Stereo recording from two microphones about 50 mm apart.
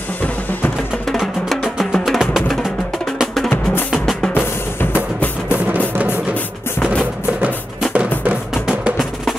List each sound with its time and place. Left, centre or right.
1.2 s music: centre
7.9 s music: right